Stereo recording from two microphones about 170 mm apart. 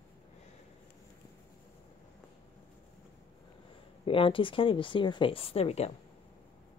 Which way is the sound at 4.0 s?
30° left (ahead or behind).